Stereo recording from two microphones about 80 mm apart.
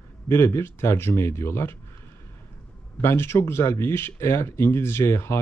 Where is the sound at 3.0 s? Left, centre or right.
Left.